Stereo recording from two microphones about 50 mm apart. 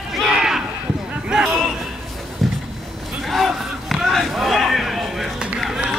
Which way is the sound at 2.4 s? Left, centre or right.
Centre.